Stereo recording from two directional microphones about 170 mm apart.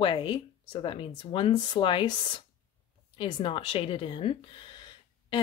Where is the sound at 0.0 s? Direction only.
30° left (ahead or behind).